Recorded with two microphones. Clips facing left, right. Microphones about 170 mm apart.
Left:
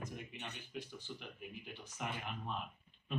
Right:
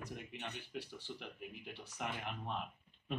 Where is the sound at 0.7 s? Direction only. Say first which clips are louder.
Right 1 dB; 70° right (ahead or behind).